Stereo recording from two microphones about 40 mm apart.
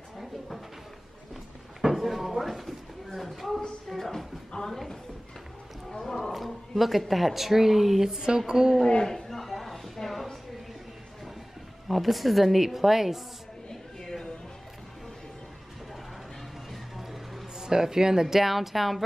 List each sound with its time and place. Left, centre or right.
1.8 s a sound: centre
5.9 s roaring cats: centre
6.1 s speech: centre
8.1 s a woman's voice: centre
8.8 s a sound: centre
11.9 s a woman's voice: centre
13.7 s a sound: centre
16.7 s music: centre
17.6 s a woman's voice: centre